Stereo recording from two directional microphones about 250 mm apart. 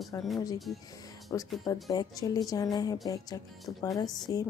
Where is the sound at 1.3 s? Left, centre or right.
Centre.